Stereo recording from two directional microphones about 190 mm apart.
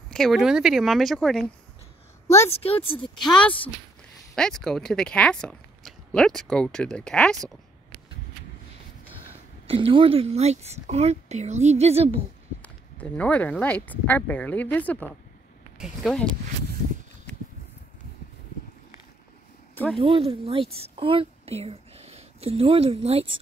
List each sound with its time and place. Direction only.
0.1 s speech: centre (ahead or behind)
2.5 s a woman's voice: 30° left (ahead or behind)
3.3 s speech: 5° left (ahead or behind)
9.7 s a woman's voice: 30° right (ahead or behind)
12.6 s speech: 10° left (ahead or behind)
19.7 s a sound: 10° left (ahead or behind)
20.0 s speech: 30° right (ahead or behind)
20.9 s a sound: 30° right (ahead or behind)
23.0 s speech: 30° right (ahead or behind)